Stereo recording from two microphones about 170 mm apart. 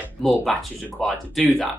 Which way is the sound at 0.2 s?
Centre (ahead or behind).